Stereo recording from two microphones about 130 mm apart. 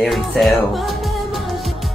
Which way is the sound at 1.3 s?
Centre (ahead or behind).